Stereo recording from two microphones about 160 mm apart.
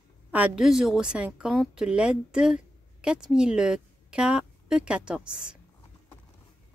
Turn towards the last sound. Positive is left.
turn(degrees=-5)  # may be behind; listen again after turning